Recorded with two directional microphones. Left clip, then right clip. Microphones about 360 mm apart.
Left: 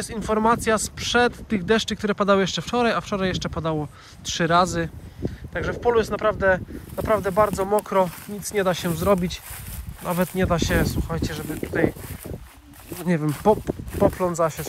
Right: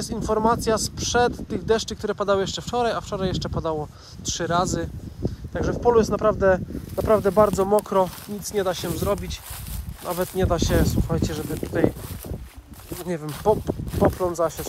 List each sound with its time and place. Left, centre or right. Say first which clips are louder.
0.0 s speech: even; centre
12.9 s speech: left 4 dB; centre